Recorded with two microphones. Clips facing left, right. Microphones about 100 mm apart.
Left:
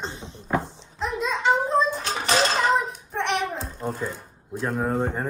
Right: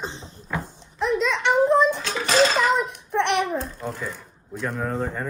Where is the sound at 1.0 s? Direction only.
75° right (ahead or behind); by 3.7 s 55° right (ahead or behind).